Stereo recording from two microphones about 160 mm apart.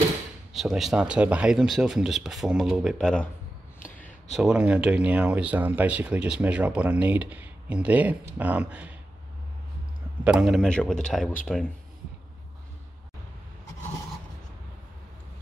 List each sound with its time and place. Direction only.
0.5 s speech: centre (ahead or behind)
3.8 s a sound: 55° left (ahead or behind)
4.4 s speech: 5° right (ahead or behind)
10.2 s speech: centre (ahead or behind)